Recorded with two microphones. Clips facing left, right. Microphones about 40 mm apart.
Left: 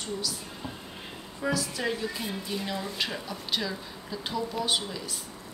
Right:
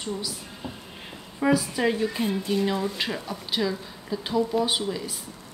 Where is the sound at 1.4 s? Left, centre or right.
Centre.